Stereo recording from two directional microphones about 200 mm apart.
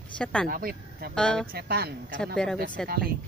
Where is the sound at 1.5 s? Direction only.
50° right (ahead or behind).